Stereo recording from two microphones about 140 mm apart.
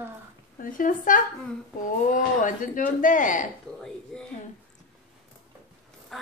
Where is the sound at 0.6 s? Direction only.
75° left (ahead or behind).